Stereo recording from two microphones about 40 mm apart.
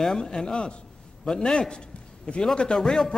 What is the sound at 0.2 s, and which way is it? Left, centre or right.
A man's voice, centre.